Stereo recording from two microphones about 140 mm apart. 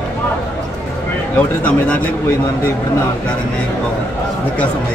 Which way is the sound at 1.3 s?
10° left (ahead or behind).